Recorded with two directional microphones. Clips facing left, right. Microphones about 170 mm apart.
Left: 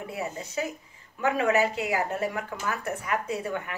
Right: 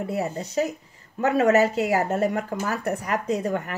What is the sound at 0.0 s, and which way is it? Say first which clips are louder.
Speech: right 6 dB; 35° right (ahead or behind).